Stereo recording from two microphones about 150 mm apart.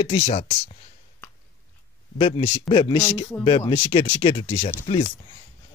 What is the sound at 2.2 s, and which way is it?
Speech, 35° left (ahead or behind).